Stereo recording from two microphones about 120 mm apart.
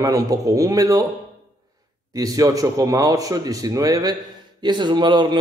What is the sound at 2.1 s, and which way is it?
A man's voice, 30° right (ahead or behind).